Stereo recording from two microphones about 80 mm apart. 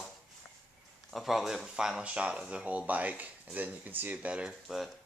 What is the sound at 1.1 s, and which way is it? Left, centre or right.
Speech, centre.